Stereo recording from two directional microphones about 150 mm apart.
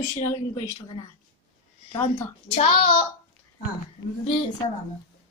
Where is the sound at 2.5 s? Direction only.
40° left (ahead or behind).